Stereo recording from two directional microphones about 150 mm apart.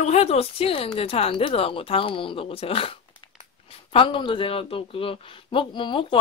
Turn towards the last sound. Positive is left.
turn(degrees=35)  # may be behind; listen again after turning